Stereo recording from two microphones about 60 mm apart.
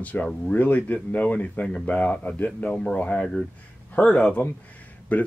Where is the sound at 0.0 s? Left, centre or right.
Left.